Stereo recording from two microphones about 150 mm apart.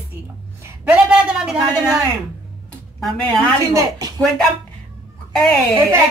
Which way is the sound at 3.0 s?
5° left (ahead or behind).